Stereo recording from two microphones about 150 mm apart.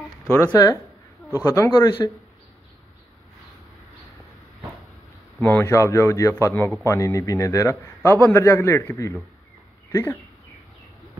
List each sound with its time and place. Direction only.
0.5 s a man's voice: 25° left (ahead or behind)
5.4 s a man's voice: 15° left (ahead or behind)